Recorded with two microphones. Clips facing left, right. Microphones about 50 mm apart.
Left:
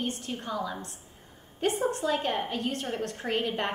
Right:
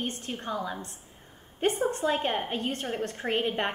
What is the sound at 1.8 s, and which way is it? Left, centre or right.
A woman's voice, right.